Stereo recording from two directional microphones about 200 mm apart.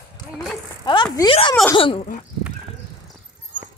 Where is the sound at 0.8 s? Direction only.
25° left (ahead or behind).